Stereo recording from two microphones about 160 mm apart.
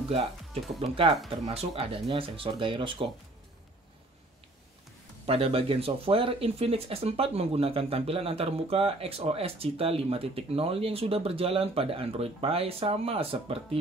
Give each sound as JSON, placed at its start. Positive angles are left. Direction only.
{"t": 0.7, "sound": "speech", "side_deg": -35}
{"t": 5.2, "sound": "speech", "side_deg": -35}